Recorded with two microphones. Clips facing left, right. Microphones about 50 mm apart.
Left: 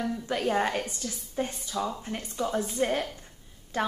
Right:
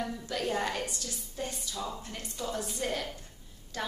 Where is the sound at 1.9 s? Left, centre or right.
Left.